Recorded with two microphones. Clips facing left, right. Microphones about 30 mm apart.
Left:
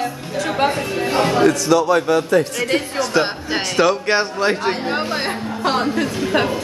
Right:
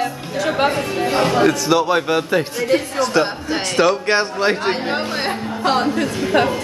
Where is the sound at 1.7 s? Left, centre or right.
Right.